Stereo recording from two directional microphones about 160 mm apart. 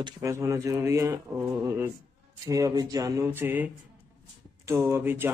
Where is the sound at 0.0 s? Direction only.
20° right (ahead or behind).